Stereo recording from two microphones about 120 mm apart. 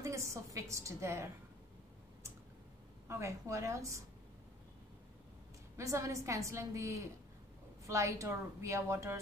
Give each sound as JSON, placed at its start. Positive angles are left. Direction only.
{"t": 0.0, "sound": "a woman's voice", "side_deg": -25}
{"t": 3.1, "sound": "a woman's voice", "side_deg": -25}
{"t": 5.8, "sound": "a woman's voice", "side_deg": -25}